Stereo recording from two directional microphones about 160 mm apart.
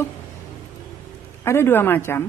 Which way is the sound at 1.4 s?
15° left (ahead or behind).